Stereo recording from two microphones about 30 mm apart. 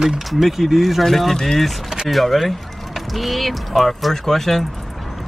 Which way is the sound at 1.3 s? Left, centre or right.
Centre.